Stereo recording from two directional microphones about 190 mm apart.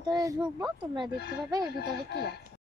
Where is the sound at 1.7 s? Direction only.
60° left (ahead or behind).